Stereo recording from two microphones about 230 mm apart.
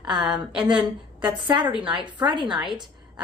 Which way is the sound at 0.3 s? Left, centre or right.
Centre.